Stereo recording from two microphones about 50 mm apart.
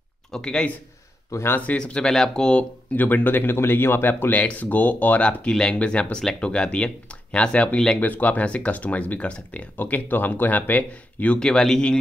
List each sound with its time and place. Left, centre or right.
0.3 s speech: centre
1.3 s speech: left
1.8 s speech: centre
2.9 s speech: left
4.1 s speech: left
5.5 s speech: centre
8.0 s speech: left
11.3 s speech: centre